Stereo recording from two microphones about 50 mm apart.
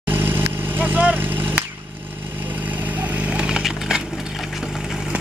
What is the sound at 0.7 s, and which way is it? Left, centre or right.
Vehicle, right.